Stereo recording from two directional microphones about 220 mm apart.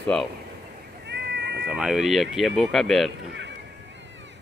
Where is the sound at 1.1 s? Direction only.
50° right (ahead or behind).